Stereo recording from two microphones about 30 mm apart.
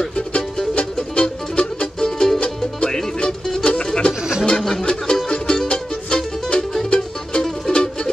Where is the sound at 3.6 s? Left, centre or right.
Left.